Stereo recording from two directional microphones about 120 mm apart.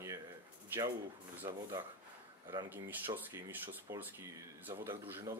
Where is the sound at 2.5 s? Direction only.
15° right (ahead or behind).